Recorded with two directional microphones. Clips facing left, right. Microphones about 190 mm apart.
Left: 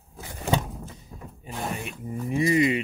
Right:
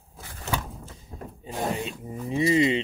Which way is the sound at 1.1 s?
40° right (ahead or behind).